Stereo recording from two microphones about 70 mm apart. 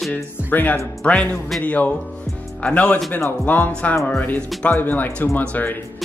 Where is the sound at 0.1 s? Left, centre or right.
Left.